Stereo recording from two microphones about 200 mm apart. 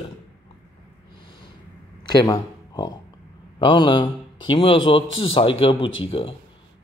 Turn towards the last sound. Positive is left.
turn(degrees=25)  # may be behind; listen again after turning